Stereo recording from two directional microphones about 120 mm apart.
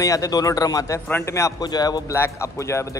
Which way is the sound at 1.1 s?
20° left (ahead or behind).